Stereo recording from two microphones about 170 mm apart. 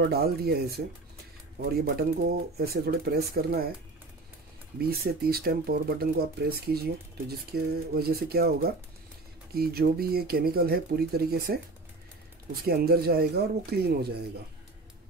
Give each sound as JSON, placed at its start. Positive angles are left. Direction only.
{"t": 0.0, "sound": "speech", "side_deg": -70}
{"t": 4.7, "sound": "speech", "side_deg": -65}
{"t": 12.6, "sound": "speech", "side_deg": -65}